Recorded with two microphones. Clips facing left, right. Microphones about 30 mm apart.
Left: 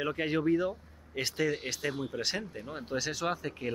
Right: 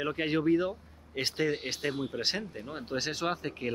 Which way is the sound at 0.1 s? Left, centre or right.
Right.